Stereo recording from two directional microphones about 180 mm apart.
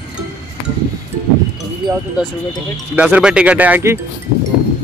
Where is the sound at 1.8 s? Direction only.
25° right (ahead or behind).